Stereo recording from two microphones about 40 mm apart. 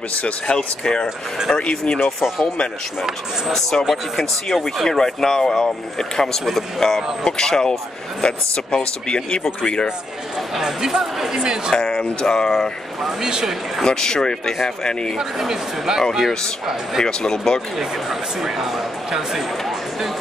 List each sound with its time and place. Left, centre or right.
0.5 s speech: left
3.9 s speech: centre; by 9.8 s left
10.6 s speech: centre
11.7 s speech: centre
13.2 s speech: centre
13.8 s speech: centre
15.1 s speech: centre
16.0 s speech: centre
17.0 s speech: centre